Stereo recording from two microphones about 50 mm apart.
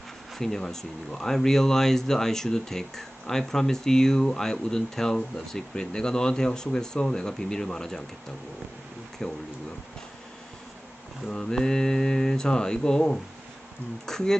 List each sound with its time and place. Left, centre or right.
0.4 s speech: centre
9.2 s speech: centre
11.2 s speech: centre